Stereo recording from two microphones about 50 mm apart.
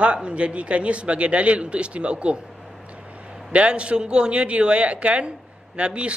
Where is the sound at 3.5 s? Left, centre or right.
Right.